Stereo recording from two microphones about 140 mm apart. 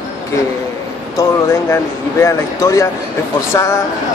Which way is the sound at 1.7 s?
20° left (ahead or behind).